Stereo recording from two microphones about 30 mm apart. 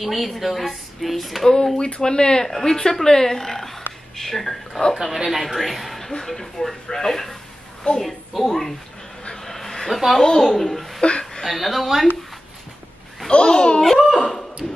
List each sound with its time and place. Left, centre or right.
0.0 s a woman's voice: centre
2.0 s speech: left
2.4 s a woman's voice: centre
5.0 s a woman's voice: centre
8.0 s a woman's voice: centre
9.3 s a sound: centre
9.8 s a woman's voice: centre
11.0 s a sound: left
11.4 s a woman's voice: centre
13.3 s a child's voice: left
13.7 s speech: centre
14.6 s a sound: centre